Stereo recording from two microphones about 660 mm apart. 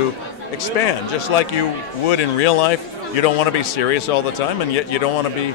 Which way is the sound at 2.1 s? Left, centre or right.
Left.